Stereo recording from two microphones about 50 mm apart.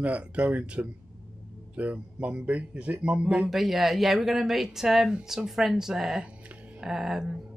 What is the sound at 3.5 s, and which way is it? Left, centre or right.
Speech, centre.